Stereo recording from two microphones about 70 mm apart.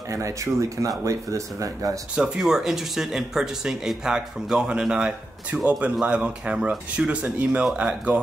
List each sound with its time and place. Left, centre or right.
0.1 s speech: right
2.1 s speech: centre